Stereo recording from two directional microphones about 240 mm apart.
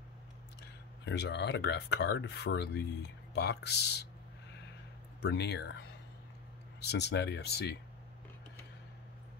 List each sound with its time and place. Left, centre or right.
0.6 s speech: left
5.2 s speech: left
6.9 s speech: left